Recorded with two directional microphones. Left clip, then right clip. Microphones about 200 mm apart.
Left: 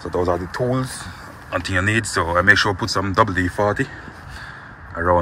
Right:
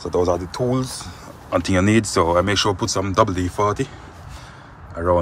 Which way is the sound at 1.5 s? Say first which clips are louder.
Right 2 dB; 30° right (ahead or behind).